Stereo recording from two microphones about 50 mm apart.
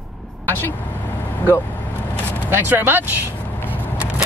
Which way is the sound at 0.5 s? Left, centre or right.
Left.